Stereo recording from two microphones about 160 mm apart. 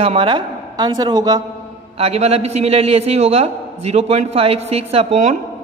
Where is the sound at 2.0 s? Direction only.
40° right (ahead or behind).